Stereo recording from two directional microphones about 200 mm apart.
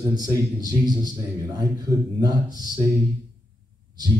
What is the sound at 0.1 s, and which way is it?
A man's voice, 20° right (ahead or behind).